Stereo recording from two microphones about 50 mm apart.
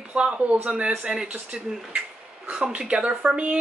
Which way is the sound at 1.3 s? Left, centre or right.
Right.